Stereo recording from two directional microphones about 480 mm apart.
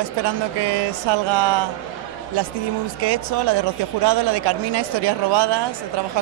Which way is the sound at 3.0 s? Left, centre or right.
Right.